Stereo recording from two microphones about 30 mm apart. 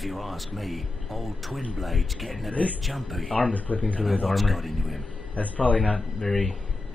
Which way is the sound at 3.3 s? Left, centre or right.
Left.